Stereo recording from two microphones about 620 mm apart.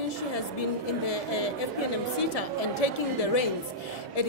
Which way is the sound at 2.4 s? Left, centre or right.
Left.